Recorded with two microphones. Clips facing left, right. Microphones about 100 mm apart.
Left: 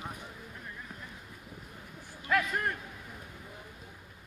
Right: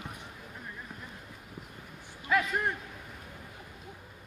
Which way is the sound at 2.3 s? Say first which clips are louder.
Right 1 dB; 15° right (ahead or behind).